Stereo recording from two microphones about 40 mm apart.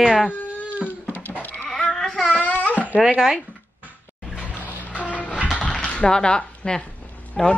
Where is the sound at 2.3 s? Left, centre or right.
Left.